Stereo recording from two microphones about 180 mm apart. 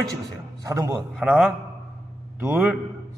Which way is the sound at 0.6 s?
15° right (ahead or behind).